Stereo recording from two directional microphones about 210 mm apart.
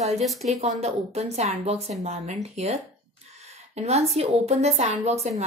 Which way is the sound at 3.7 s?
30° right (ahead or behind).